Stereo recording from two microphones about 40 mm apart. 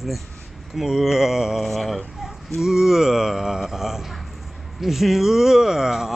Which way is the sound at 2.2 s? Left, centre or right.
Centre.